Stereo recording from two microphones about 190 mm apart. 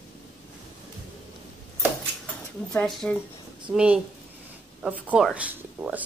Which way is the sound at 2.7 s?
Centre (ahead or behind).